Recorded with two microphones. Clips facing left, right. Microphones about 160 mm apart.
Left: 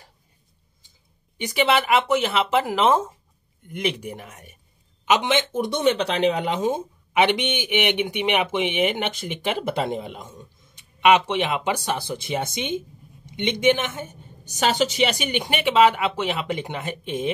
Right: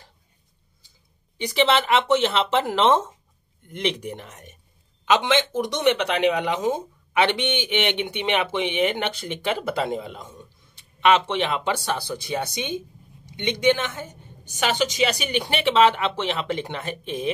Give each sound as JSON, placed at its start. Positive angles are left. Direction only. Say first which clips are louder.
{"t": 1.4, "sound": "speech", "louder": "even", "side_deg": 10}
{"t": 5.0, "sound": "speech", "louder": "even", "side_deg": 20}
{"t": 6.6, "sound": "speech", "louder": "left 1 dB", "side_deg": 15}
{"t": 14.5, "sound": "a woman's voice", "louder": "left 2 dB", "side_deg": 40}
{"t": 15.2, "sound": "speech", "louder": "right 1 dB", "side_deg": 20}